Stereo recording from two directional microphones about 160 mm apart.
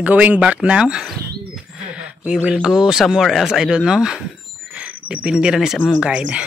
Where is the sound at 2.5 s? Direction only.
5° right (ahead or behind).